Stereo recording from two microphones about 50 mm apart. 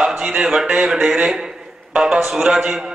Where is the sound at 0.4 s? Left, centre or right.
Centre.